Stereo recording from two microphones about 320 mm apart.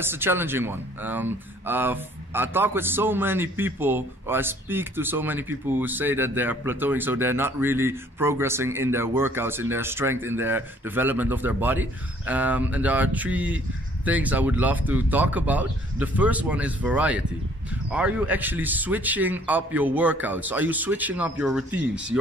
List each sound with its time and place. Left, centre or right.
0.0 s a man's voice: centre